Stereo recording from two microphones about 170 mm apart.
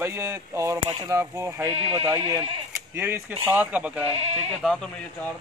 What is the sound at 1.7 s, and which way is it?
Speech, 35° right (ahead or behind).